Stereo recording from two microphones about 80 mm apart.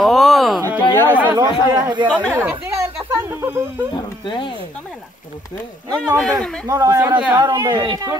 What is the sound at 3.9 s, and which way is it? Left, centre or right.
Speech, left.